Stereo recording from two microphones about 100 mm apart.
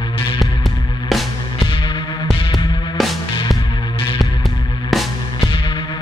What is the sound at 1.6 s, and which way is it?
Music, 55° left (ahead or behind).